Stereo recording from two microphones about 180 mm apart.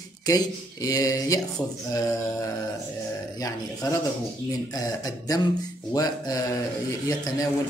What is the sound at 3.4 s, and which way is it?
Speech, 20° left (ahead or behind).